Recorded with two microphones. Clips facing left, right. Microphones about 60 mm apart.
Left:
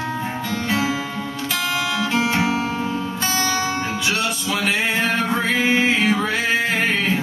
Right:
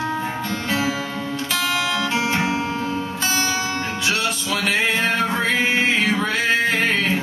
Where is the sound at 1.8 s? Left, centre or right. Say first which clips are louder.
Even; centre.